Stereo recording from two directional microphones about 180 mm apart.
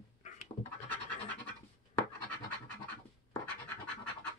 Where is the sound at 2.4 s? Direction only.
10° left (ahead or behind).